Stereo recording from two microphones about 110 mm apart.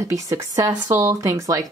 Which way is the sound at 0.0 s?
30° right (ahead or behind).